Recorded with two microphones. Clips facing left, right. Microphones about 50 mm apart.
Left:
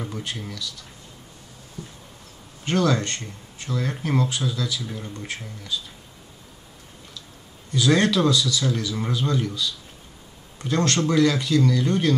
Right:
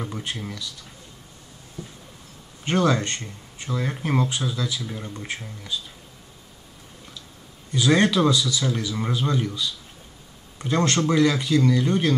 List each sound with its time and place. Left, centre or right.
0.2 s speech: centre
1.8 s a sound: right
2.6 s a man's voice: right
7.7 s a man's voice: centre